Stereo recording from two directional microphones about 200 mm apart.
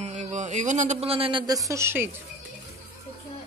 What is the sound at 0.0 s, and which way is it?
A woman's voice, 35° right (ahead or behind).